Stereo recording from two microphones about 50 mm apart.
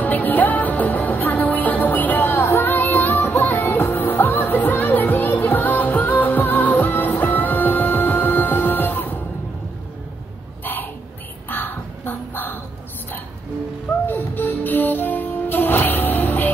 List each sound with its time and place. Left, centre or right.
0.0 s music: left
10.6 s a sound: left
11.4 s crow: left
14.0 s music: left